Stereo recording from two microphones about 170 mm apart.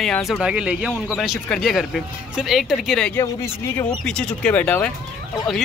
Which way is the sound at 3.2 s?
15° left (ahead or behind).